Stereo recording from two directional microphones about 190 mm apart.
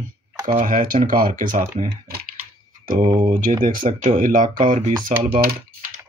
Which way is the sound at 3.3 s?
45° right (ahead or behind).